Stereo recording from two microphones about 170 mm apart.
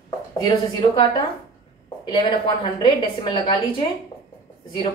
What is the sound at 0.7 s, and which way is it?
A woman's voice, 25° left (ahead or behind).